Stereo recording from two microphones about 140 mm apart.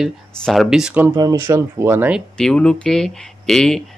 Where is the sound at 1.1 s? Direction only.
25° right (ahead or behind).